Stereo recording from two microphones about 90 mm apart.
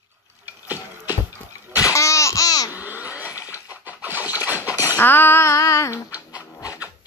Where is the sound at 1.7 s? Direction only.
35° left (ahead or behind).